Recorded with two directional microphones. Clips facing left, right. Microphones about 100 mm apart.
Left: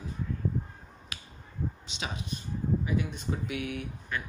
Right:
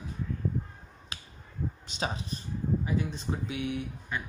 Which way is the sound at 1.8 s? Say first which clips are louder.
Right 4 dB; 40° right (ahead or behind).